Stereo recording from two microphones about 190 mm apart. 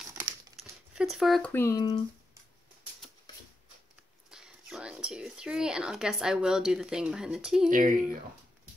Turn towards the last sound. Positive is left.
turn(degrees=-45)  # may be behind; listen again after turning